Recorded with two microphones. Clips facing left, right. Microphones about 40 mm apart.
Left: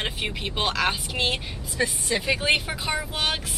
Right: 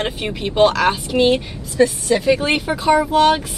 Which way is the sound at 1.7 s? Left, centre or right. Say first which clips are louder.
Right 10 dB; centre.